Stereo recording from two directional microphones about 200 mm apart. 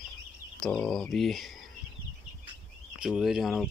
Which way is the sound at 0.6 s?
5° left (ahead or behind).